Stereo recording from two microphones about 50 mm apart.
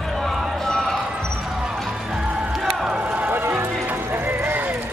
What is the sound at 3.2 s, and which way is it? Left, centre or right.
Music, right.